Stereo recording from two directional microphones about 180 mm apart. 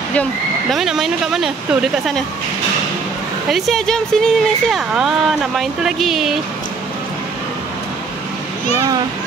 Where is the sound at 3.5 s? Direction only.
Centre (ahead or behind).